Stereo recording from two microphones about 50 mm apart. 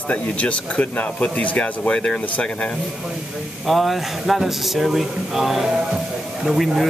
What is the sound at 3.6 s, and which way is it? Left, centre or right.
Speech, centre.